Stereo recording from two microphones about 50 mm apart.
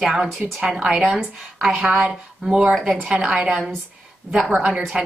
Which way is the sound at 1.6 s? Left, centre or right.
Centre.